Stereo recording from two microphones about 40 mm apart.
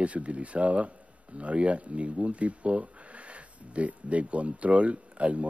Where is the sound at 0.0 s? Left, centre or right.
Right.